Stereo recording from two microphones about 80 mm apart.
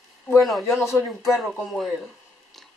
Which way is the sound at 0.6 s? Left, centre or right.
Left.